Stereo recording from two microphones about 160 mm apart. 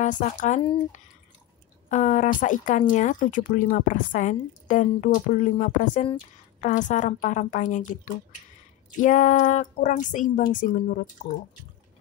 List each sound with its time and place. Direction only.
0.0 s a woman's voice: 50° left (ahead or behind)
1.9 s a woman's voice: 50° left (ahead or behind)